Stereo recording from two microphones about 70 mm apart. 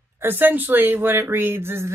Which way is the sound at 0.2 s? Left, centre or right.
Right.